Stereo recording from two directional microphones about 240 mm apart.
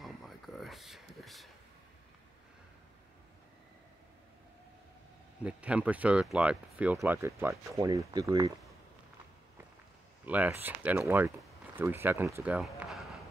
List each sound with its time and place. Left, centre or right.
0.0 s a sound: centre
5.4 s speech: centre
10.2 s speech: centre